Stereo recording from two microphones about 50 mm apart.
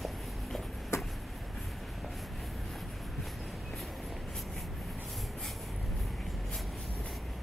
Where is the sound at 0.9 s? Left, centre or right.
Left.